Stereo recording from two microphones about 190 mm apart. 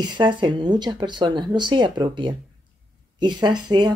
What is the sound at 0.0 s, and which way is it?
Speech, 25° right (ahead or behind).